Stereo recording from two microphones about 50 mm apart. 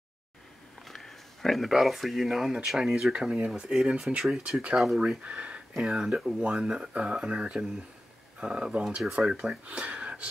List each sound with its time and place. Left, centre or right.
0.8 s a sound: centre
1.7 s speech: centre
3.1 s speech: right